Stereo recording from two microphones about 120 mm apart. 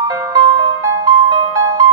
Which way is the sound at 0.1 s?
30° right (ahead or behind).